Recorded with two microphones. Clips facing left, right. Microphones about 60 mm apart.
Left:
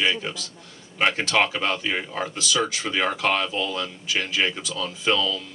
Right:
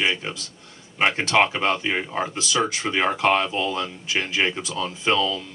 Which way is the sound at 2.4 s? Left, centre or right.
Right.